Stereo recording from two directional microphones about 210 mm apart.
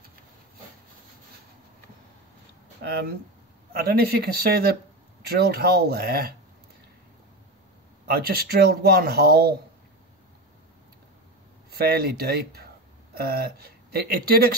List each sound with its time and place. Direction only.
2.8 s speech: 55° right (ahead or behind)
8.1 s speech: 50° right (ahead or behind)
11.7 s speech: 45° right (ahead or behind)